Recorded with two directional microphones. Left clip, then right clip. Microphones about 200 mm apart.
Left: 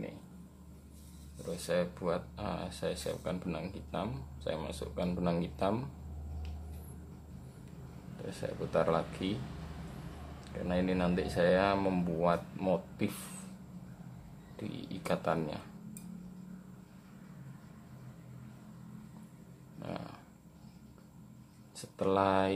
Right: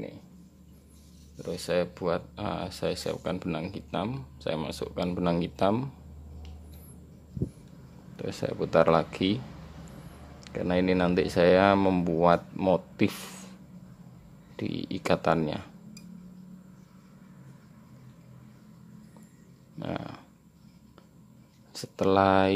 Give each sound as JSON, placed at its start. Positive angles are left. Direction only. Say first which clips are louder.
{"t": 1.4, "sound": "speech", "louder": "right 5 dB", "side_deg": -40}
{"t": 8.3, "sound": "speech", "louder": "right 8 dB", "side_deg": -40}
{"t": 10.4, "sound": "speech", "louder": "right 8 dB", "side_deg": -40}
{"t": 14.6, "sound": "speech", "louder": "right 9 dB", "side_deg": -40}
{"t": 19.8, "sound": "a sound", "louder": "right 7 dB", "side_deg": -30}
{"t": 21.7, "sound": "speech", "louder": "right 7 dB", "side_deg": -40}